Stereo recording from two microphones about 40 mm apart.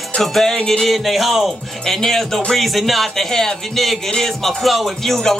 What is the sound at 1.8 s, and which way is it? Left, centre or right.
Music, centre.